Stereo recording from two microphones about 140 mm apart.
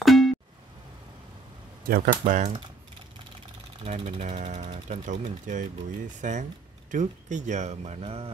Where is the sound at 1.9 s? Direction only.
85° right.